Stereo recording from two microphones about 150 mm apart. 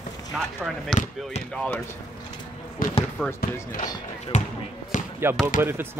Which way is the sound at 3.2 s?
Centre (ahead or behind).